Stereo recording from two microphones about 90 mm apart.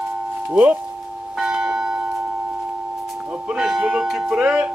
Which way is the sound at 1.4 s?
10° right (ahead or behind).